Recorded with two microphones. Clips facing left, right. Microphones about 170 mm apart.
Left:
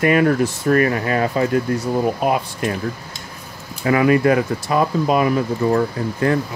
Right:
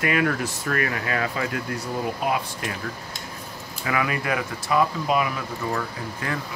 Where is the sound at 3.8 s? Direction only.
40° left (ahead or behind).